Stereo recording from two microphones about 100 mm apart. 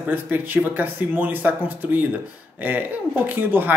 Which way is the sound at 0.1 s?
20° right (ahead or behind).